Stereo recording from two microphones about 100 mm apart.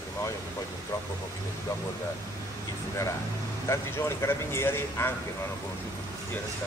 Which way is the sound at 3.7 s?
25° left (ahead or behind).